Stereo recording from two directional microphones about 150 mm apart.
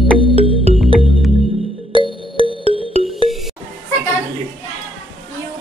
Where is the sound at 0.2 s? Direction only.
35° right (ahead or behind).